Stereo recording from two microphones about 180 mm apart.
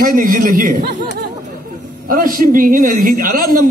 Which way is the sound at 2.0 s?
50° right (ahead or behind).